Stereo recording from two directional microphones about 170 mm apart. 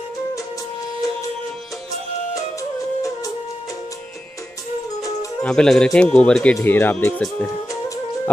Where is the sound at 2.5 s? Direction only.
20° left (ahead or behind).